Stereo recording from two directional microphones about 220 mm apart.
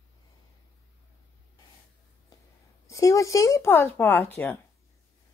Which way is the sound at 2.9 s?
15° left (ahead or behind).